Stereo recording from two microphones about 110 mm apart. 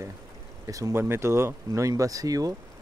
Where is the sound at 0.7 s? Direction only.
30° right (ahead or behind).